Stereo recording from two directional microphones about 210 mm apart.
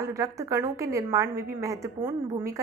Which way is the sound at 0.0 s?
15° right (ahead or behind).